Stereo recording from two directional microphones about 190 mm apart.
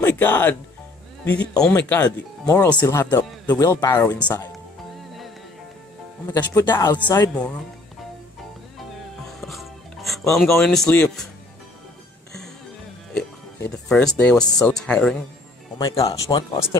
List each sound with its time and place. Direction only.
0.0 s speech: 10° left (ahead or behind)
1.2 s speech: 65° left (ahead or behind)
1.7 s speech: 15° left (ahead or behind)
6.2 s speech: 15° left (ahead or behind)
8.9 s music: centre (ahead or behind)
10.6 s speech: 5° left (ahead or behind)
13.8 s speech: 5° left (ahead or behind)
15.8 s speech: 25° left (ahead or behind)